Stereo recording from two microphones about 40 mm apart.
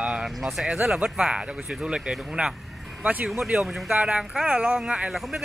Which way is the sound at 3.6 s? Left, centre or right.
Centre.